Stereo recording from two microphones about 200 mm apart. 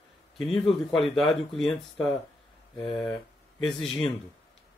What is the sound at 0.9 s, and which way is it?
Speech, centre (ahead or behind).